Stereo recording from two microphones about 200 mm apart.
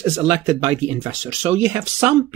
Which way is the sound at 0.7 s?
15° right (ahead or behind).